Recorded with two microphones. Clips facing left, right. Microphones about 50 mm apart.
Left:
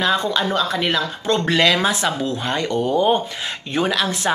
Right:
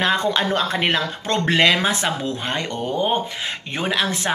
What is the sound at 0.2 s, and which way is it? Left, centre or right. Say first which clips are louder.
Speech: even; right.